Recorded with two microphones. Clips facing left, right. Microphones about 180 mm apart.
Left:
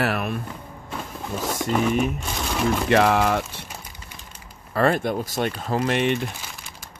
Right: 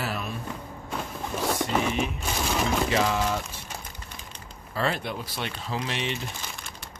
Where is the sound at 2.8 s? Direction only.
65° left (ahead or behind).